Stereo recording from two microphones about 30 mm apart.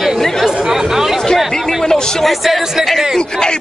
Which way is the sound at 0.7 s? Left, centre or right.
Centre.